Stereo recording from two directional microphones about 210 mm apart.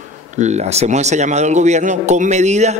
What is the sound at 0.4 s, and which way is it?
A man's voice, 30° right (ahead or behind).